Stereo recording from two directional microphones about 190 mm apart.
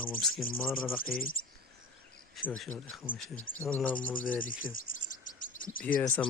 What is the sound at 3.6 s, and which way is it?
Speech, 10° left (ahead or behind).